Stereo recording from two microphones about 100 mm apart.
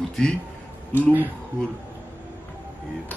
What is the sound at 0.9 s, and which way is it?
Speech, 20° right (ahead or behind).